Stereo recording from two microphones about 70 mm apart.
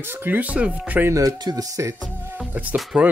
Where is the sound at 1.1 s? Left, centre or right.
Right.